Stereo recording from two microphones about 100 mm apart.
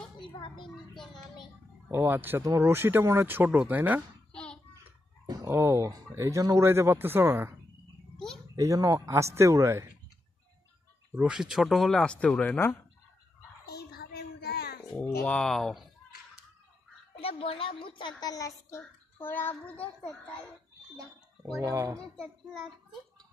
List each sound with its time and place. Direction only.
0.2 s a woman's voice: 55° left (ahead or behind)
0.9 s speech: centre (ahead or behind)
1.9 s speech: 20° right (ahead or behind)
4.3 s hands: 10° left (ahead or behind)
5.2 s chicken: 35° right (ahead or behind)
5.5 s speech: 25° right (ahead or behind)
8.5 s speech: 35° right (ahead or behind)
11.1 s speech: 10° right (ahead or behind); by 12.7 s 15° left (ahead or behind)
15.2 s speech: 10° left (ahead or behind)
17.2 s a woman's voice: 70° left (ahead or behind); by 18.3 s 55° left (ahead or behind)
18.3 s child singing: 30° left (ahead or behind); by 19.9 s 15° left (ahead or behind)
21.5 s speech: 30° right (ahead or behind)
22.1 s a child's voice: 5° left (ahead or behind)